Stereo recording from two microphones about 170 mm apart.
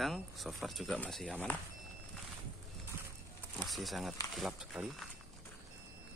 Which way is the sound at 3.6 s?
Centre (ahead or behind).